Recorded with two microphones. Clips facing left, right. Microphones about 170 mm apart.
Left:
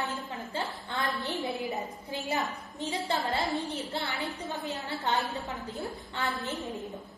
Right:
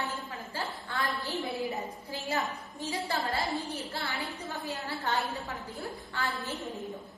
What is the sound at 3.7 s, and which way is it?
A woman's voice, 20° left (ahead or behind).